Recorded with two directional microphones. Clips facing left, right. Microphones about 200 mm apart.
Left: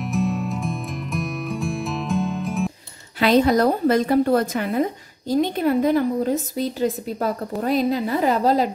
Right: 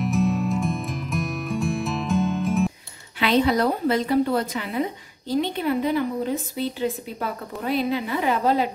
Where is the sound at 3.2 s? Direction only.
40° left (ahead or behind).